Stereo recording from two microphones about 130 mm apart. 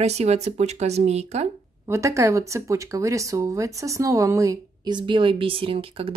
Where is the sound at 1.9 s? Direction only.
25° right (ahead or behind); by 6.1 s 45° right (ahead or behind).